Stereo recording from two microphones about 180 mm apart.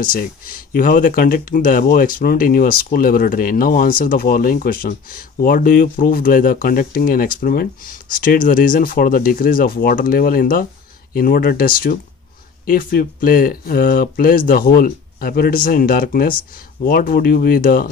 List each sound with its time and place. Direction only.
0.0 s speech: 50° left (ahead or behind)